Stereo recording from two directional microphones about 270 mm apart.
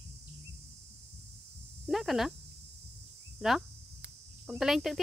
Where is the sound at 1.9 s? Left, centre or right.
Centre.